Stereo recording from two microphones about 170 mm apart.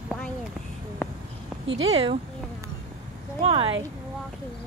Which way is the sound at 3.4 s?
35° right (ahead or behind).